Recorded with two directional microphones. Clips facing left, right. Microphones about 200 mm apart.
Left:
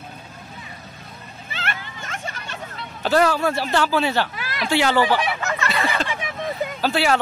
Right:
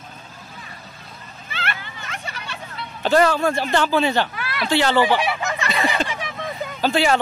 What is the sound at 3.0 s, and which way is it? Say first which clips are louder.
Speech: right 1 dB; 5° left (ahead or behind).